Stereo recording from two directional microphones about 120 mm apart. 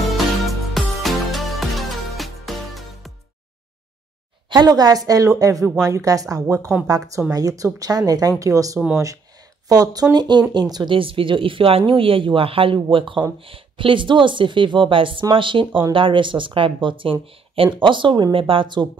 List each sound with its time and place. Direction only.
0.5 s music: centre (ahead or behind)
4.5 s a woman's voice: 35° right (ahead or behind)
8.7 s speech: 5° right (ahead or behind)
9.7 s speech: 30° right (ahead or behind)